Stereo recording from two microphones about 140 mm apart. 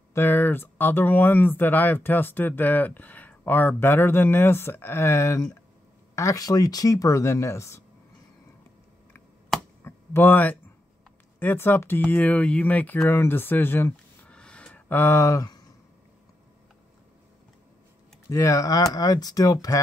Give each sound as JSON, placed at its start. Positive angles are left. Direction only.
{"t": 0.1, "sound": "speech", "side_deg": 15}
{"t": 9.8, "sound": "speech", "side_deg": 15}
{"t": 18.3, "sound": "speech", "side_deg": 25}